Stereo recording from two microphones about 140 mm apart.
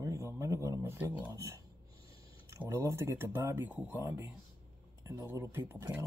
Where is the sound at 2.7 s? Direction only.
20° right (ahead or behind).